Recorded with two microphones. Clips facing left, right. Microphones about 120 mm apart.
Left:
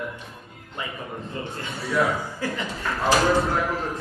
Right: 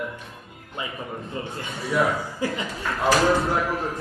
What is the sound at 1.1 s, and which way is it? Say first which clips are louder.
Speech: right 1 dB; 15° right (ahead or behind).